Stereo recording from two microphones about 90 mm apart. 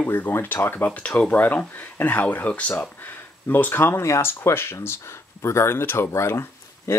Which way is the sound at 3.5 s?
20° left (ahead or behind).